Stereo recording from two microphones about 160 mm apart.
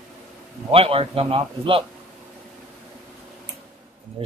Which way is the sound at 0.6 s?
35° right (ahead or behind).